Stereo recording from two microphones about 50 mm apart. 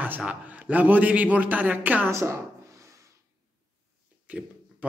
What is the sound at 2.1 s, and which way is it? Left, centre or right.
Speech, right.